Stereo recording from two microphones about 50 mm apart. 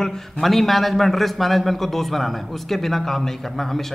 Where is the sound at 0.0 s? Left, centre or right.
Centre.